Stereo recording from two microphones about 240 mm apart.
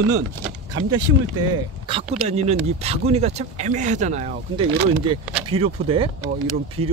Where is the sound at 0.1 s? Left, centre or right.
Right.